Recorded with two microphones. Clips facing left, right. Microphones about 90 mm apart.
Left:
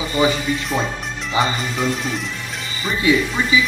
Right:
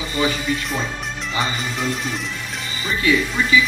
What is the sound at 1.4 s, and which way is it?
Speech, centre (ahead or behind).